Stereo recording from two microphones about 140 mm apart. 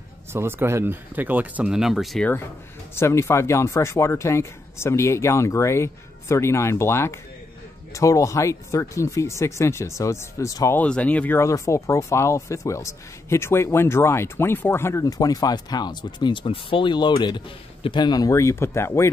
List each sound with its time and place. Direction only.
0.3 s speech: 15° right (ahead or behind); by 2.2 s centre (ahead or behind)
3.0 s speech: 20° left (ahead or behind)
10.8 s speech: 10° left (ahead or behind)